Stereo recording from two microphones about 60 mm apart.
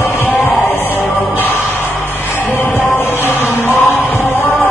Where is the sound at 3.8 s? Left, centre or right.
Left.